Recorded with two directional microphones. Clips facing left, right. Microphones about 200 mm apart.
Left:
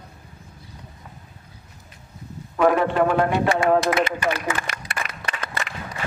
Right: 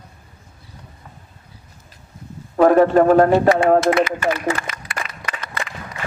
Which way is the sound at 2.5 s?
40° right (ahead or behind).